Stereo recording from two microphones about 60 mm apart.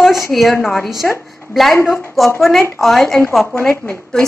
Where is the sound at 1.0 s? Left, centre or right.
Centre.